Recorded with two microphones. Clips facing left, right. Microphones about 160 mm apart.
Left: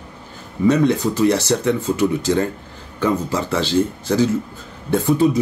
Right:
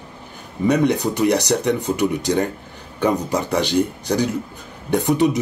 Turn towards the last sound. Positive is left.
turn(degrees=-15)  # may be behind; listen again after turning